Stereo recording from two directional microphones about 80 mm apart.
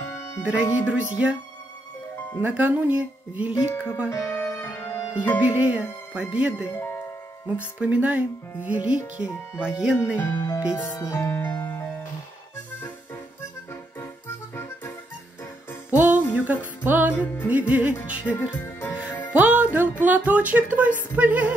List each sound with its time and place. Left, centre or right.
0.0 s music: left
0.8 s speech: centre
2.4 s music: centre
4.1 s music: left
5.4 s music: centre
6.1 s speech: centre
6.7 s speech: left
7.8 s speech: centre
10.1 s music: left
13.9 s music: left
15.9 s music: right
18.4 s music: left
19.3 s music: centre